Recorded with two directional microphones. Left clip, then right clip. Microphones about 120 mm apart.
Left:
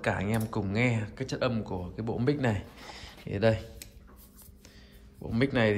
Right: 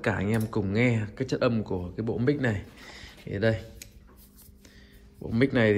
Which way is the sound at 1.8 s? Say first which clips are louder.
Right 2 dB; 25° left (ahead or behind).